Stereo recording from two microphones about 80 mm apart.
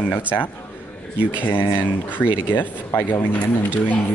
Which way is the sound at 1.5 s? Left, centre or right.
Left.